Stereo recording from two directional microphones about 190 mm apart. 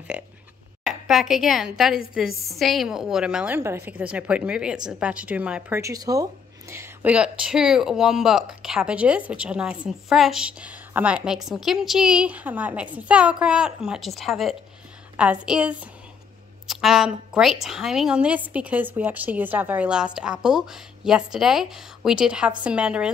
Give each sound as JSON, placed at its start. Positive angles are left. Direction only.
{"t": 0.1, "sound": "a woman's voice", "side_deg": -5}